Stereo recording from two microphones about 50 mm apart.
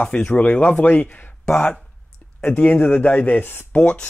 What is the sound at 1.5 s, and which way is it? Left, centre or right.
Speech, left.